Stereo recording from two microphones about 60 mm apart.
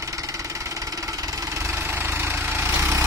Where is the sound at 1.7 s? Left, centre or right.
Right.